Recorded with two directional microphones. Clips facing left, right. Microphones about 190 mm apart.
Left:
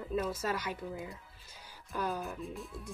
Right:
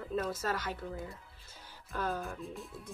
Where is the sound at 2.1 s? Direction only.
Centre (ahead or behind).